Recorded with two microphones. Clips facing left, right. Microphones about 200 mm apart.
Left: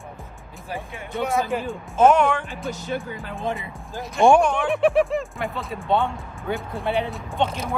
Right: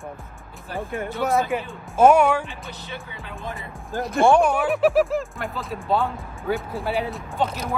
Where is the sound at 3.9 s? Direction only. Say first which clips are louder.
Right 6 dB; 55° right (ahead or behind).